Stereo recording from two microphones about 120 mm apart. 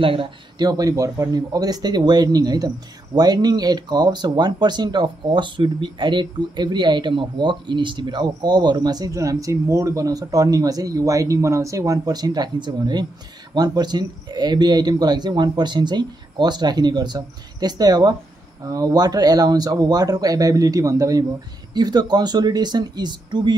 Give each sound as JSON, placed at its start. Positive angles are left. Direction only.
{"t": 0.0, "sound": "speech", "side_deg": -45}